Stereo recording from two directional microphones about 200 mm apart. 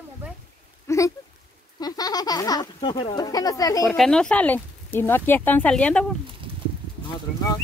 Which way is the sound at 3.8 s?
Centre (ahead or behind).